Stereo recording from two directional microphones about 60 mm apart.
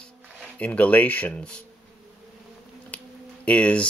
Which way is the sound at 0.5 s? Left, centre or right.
Left.